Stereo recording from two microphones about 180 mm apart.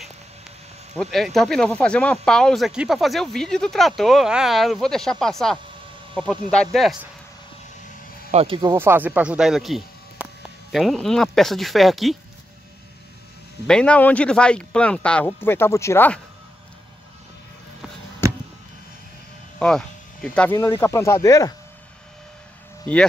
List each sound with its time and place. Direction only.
0.9 s speech: centre (ahead or behind)
8.3 s speech: 30° right (ahead or behind)
8.7 s speech: 10° right (ahead or behind)
13.7 s speech: 5° left (ahead or behind)
18.2 s a sound: 15° right (ahead or behind)
19.6 s speech: 5° left (ahead or behind)